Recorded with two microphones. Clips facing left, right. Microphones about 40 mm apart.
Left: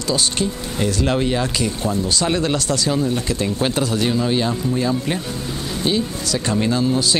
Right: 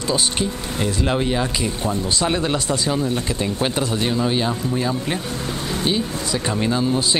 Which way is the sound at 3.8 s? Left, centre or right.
Centre.